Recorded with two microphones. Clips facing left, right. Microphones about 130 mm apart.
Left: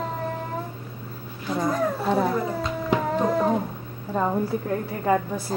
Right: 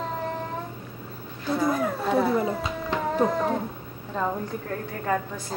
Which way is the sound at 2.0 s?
10° left (ahead or behind).